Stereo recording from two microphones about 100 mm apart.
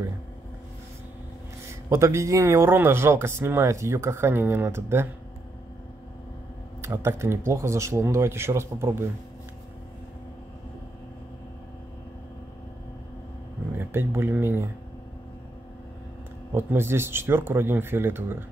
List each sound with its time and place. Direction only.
1.7 s speech: 30° right (ahead or behind)
6.8 s speech: 25° right (ahead or behind)
13.7 s speech: 25° right (ahead or behind)
16.5 s speech: 25° right (ahead or behind)